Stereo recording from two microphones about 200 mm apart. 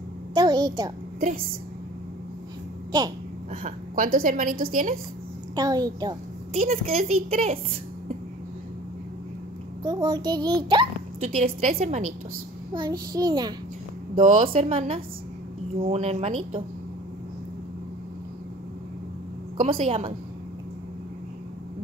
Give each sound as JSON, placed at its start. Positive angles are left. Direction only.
{"t": 0.3, "sound": "a child's voice", "side_deg": -20}
{"t": 3.6, "sound": "a woman's voice", "side_deg": -40}
{"t": 5.6, "sound": "a child's voice", "side_deg": -20}
{"t": 6.5, "sound": "a woman's voice", "side_deg": -30}
{"t": 9.8, "sound": "a child's voice", "side_deg": -20}
{"t": 11.1, "sound": "a woman's voice", "side_deg": -35}
{"t": 12.7, "sound": "a child's voice", "side_deg": -20}
{"t": 14.2, "sound": "a child's voice", "side_deg": -30}
{"t": 15.8, "sound": "a woman's voice", "side_deg": -30}
{"t": 19.5, "sound": "a child's voice", "side_deg": -30}